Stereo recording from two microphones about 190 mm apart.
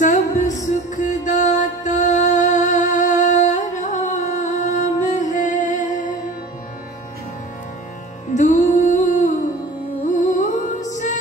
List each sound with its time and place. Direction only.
0.0 s music: 40° left (ahead or behind)
8.4 s music: 40° left (ahead or behind)